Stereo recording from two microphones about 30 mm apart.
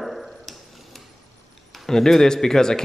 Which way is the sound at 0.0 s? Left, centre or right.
Centre.